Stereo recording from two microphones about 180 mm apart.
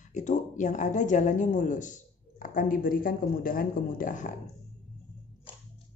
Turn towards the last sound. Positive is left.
turn(degrees=45)  # may be behind; listen again after turning